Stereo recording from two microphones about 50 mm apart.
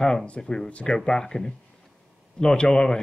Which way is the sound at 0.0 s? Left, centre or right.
Centre.